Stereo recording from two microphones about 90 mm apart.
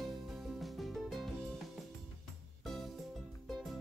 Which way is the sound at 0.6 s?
Centre (ahead or behind).